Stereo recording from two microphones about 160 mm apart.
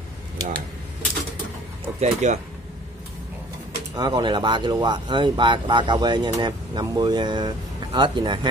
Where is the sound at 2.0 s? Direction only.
45° right (ahead or behind).